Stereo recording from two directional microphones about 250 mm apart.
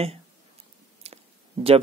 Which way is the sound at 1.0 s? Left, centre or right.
Right.